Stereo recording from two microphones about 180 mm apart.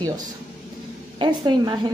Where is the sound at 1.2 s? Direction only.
25° right (ahead or behind).